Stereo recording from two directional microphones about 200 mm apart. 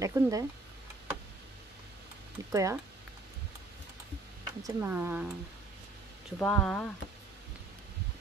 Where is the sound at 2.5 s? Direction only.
15° right (ahead or behind).